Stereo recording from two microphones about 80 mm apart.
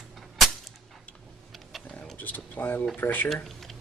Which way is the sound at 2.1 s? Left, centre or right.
Left.